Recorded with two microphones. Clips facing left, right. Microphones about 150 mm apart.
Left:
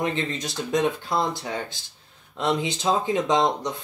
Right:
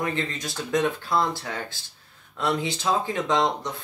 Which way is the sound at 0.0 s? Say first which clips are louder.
Left 2 dB; 20° left (ahead or behind).